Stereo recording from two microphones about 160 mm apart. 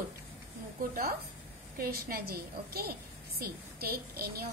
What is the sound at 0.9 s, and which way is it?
A woman's voice, 70° right (ahead or behind).